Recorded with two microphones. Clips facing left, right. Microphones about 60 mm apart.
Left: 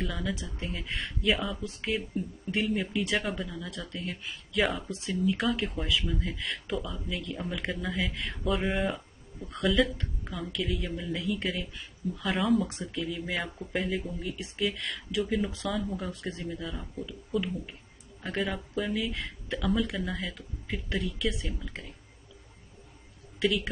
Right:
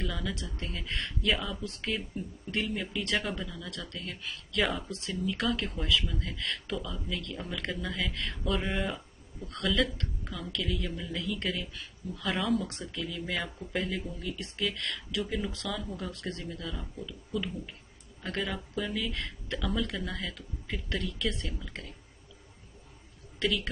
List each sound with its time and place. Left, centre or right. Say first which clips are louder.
0.0 s speech: left 2 dB; centre
4.6 s speech: left 2 dB; centre
12.3 s speech: left 3 dB; centre
23.4 s speech: left 3 dB; centre